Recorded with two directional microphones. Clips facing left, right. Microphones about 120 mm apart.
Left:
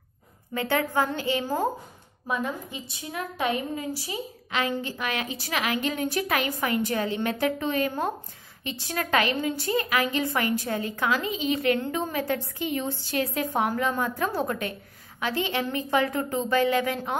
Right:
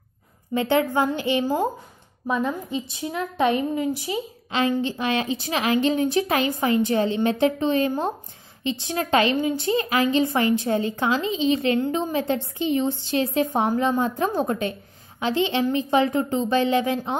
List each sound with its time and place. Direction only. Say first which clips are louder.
0.6 s a woman's voice: right 4 dB; 20° right (ahead or behind)